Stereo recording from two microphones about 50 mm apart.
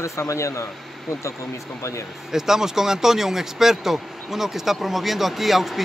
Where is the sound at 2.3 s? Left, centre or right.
Centre.